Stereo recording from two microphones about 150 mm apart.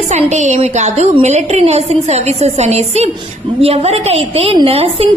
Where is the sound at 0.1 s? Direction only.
50° right (ahead or behind).